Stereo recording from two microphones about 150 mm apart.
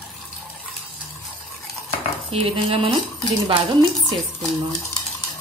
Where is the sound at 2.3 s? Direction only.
40° right (ahead or behind).